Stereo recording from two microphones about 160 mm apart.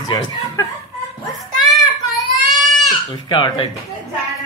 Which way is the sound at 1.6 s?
Centre (ahead or behind).